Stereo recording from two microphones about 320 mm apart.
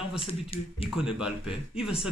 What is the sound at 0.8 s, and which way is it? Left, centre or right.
A man's voice, centre.